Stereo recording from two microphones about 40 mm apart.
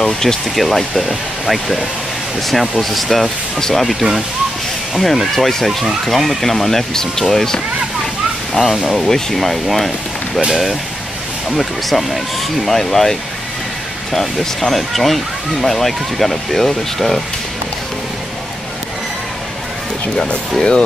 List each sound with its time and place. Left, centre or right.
0.0 s speech: centre
8.9 s speech: centre
20.5 s speech: centre